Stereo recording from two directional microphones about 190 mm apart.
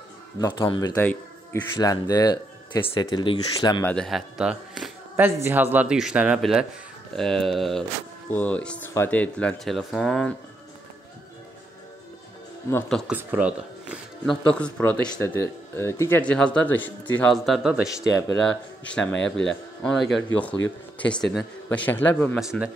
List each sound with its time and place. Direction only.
0.4 s speech: 25° left (ahead or behind)
0.9 s speech: 10° left (ahead or behind)
3.8 s a man's voice: 5° left (ahead or behind)
12.7 s speech: 15° left (ahead or behind)
13.1 s speech: 5° right (ahead or behind)
14.5 s speech: 10° left (ahead or behind)
17.8 s speech: 15° left (ahead or behind)
19.0 s speech: 5° left (ahead or behind)
22.4 s speech: centre (ahead or behind)